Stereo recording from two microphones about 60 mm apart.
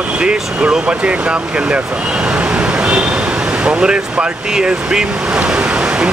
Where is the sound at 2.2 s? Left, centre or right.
Centre.